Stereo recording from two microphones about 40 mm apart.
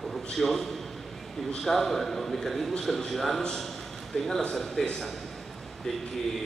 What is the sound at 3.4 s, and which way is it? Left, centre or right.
A man's voice, centre.